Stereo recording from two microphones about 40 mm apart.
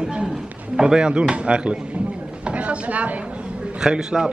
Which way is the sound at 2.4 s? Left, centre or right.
Right.